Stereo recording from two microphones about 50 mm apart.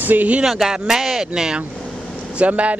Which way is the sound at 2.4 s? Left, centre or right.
Right.